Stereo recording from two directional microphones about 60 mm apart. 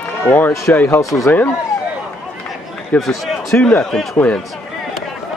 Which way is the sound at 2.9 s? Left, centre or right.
Left.